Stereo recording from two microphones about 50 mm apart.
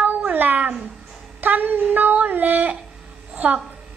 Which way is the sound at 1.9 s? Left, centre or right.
Right.